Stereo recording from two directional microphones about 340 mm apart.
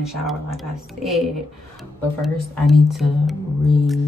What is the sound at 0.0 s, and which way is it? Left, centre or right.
Speech, centre.